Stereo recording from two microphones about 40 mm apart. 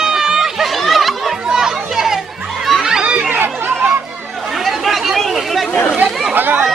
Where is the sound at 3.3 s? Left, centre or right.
Right.